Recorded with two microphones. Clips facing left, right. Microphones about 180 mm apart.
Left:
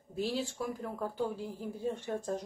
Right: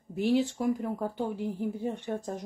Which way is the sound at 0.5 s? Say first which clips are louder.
Right 8 dB; 20° right (ahead or behind).